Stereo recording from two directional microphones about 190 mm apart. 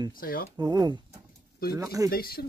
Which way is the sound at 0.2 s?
50° left (ahead or behind).